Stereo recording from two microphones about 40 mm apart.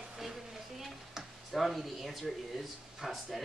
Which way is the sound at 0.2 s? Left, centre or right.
Centre.